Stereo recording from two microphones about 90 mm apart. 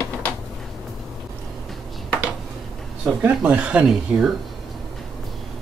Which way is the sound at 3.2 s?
10° right (ahead or behind).